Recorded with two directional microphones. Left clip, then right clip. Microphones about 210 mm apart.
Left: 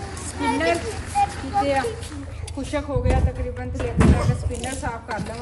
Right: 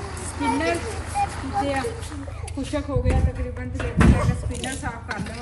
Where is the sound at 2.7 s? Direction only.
5° left (ahead or behind).